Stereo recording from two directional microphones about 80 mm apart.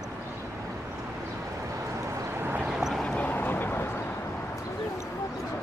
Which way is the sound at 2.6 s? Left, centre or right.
Centre.